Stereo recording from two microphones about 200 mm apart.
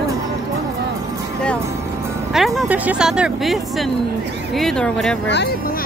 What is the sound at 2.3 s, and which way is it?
Speech, centre (ahead or behind).